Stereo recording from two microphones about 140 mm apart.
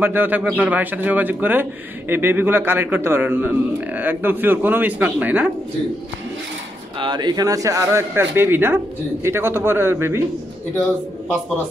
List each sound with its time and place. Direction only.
0.0 s a man's voice: 15° right (ahead or behind)
7.0 s a man's voice: 30° right (ahead or behind); by 10.2 s 15° right (ahead or behind)